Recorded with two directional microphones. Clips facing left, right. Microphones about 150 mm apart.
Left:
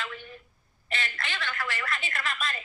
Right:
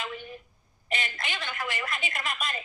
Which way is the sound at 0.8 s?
15° right (ahead or behind).